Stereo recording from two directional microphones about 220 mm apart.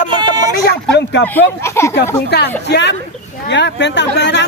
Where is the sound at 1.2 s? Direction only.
10° left (ahead or behind).